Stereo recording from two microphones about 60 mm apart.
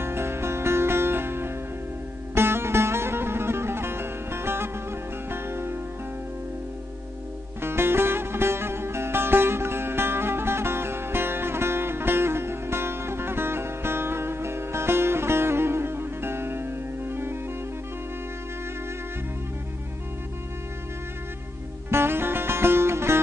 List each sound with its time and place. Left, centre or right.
0.0 s music: right
7.6 s music: right
21.9 s music: right